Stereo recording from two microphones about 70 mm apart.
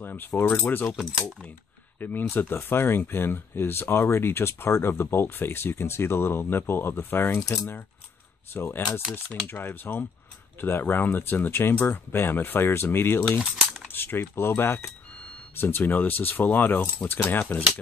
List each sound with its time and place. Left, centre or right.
0.0 s cutlery: left
0.6 s speech: left
2.0 s speech: left
8.5 s speech: left